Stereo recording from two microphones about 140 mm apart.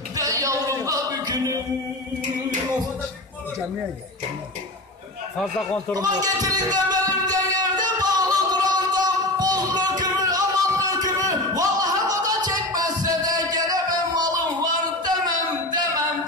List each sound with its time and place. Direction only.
0.2 s music: 25° right (ahead or behind)
5.4 s speech: 10° left (ahead or behind)
5.9 s a man's voice: 25° right (ahead or behind)
6.9 s music: 30° right (ahead or behind)